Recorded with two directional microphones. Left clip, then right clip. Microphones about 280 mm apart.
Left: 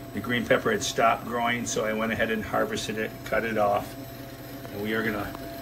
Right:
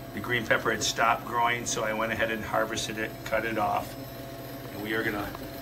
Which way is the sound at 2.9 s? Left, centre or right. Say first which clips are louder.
Left 2 dB; right.